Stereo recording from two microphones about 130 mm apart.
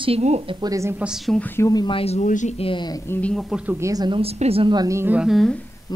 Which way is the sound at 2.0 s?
55° left (ahead or behind).